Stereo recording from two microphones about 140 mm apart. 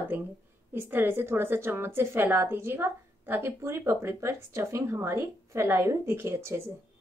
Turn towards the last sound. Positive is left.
turn(degrees=-20)  # may be behind; listen again after turning